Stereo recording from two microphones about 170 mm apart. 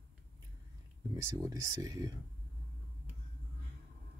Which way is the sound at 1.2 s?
20° right (ahead or behind).